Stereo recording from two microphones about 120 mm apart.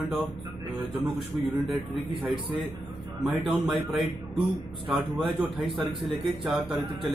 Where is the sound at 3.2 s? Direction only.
Centre (ahead or behind).